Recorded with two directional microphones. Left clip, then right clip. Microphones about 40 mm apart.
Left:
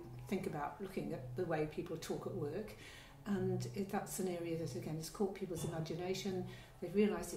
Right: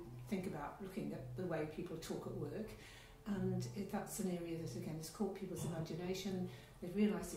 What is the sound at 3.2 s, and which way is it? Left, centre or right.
Speech, left.